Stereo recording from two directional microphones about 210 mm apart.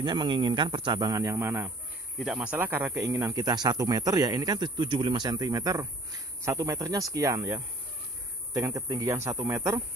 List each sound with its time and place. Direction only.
0.0 s speech: 20° right (ahead or behind)